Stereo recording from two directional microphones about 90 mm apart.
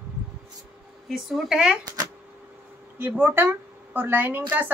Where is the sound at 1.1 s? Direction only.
5° right (ahead or behind).